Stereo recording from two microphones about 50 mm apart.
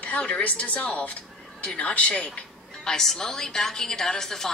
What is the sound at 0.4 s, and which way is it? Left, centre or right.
A woman's voice, left.